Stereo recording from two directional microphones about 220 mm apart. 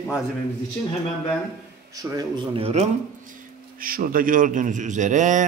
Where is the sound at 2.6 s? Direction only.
30° right (ahead or behind).